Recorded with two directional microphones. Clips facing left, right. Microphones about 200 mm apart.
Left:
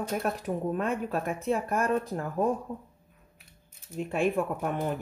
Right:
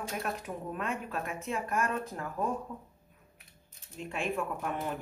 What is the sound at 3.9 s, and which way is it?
Speech, 40° left (ahead or behind).